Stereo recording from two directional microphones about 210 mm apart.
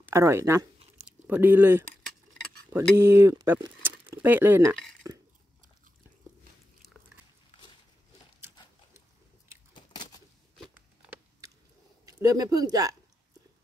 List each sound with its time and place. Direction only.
0.1 s speech: 15° right (ahead or behind)
4.0 s dishes: 10° right (ahead or behind)
9.8 s a sound: 20° left (ahead or behind)
12.1 s speech: 15° right (ahead or behind)